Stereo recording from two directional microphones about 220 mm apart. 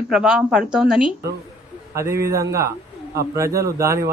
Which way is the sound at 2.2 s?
15° right (ahead or behind).